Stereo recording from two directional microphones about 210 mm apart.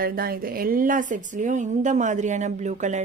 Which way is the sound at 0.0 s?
45° right (ahead or behind).